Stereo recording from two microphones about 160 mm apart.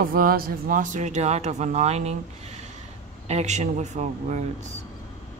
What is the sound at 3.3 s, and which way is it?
Speech, 45° right (ahead or behind).